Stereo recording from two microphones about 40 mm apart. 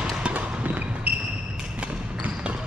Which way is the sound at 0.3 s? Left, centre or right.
Right.